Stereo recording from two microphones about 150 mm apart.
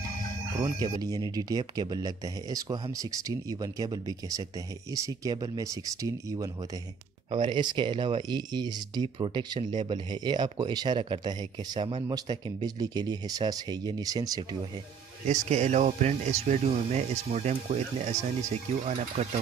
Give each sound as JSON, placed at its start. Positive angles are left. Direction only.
{"t": 0.6, "sound": "speech", "side_deg": -25}
{"t": 15.2, "sound": "speech", "side_deg": -50}